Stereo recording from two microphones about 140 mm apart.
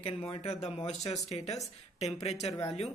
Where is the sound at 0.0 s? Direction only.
45° left (ahead or behind).